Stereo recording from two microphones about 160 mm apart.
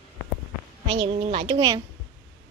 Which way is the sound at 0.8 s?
30° right (ahead or behind).